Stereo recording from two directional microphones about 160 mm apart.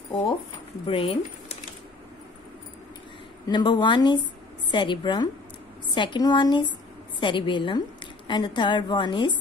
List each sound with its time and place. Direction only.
0.8 s speech: 35° left (ahead or behind)
3.4 s a woman's voice: 25° left (ahead or behind)